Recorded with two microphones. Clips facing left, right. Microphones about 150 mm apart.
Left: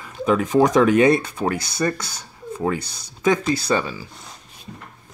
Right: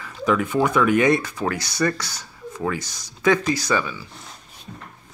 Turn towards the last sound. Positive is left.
turn(degrees=30)  # may be behind; listen again after turning